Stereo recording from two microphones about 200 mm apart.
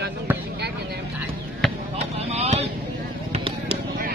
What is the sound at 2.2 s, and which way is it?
Vehicle, 30° right (ahead or behind).